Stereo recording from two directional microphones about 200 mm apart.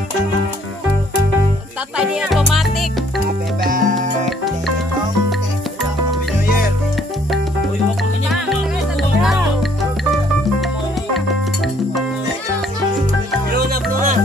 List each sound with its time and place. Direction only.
2.0 s speech: 5° right (ahead or behind)
3.7 s music: 40° right (ahead or behind)
13.5 s music: 45° right (ahead or behind)